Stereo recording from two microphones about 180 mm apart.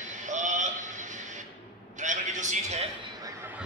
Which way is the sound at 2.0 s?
45° right (ahead or behind).